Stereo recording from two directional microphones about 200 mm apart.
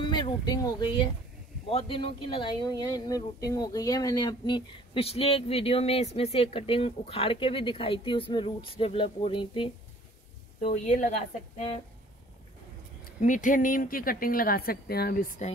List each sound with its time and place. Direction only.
0.0 s a woman's voice: 25° left (ahead or behind)
13.2 s speech: 40° left (ahead or behind)